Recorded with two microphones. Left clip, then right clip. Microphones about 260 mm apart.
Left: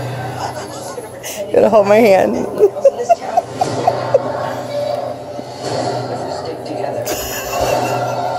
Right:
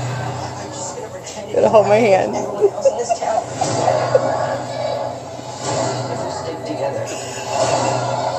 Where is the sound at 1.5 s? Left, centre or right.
Left.